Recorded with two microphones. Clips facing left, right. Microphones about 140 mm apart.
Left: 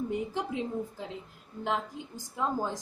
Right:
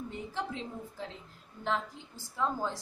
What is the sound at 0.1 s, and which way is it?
A woman's voice, 15° left (ahead or behind).